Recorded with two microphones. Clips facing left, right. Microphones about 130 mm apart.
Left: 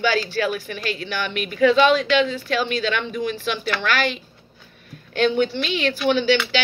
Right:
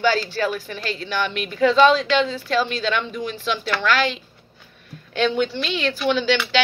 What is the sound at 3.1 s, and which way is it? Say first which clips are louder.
Speech: left 1 dB; 50° left (ahead or behind).